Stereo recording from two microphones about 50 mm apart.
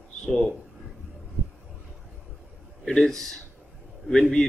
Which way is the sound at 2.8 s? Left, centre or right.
Centre.